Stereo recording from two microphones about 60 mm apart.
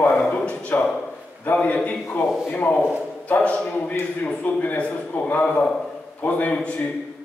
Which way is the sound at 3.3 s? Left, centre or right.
Left.